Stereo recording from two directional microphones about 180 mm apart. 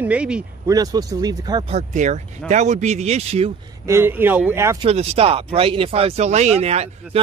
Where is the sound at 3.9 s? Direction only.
15° right (ahead or behind).